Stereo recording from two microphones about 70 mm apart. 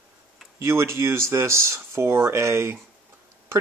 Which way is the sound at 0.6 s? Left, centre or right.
Right.